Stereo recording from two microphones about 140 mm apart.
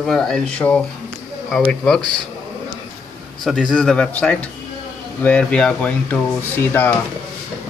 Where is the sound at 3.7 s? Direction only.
5° left (ahead or behind).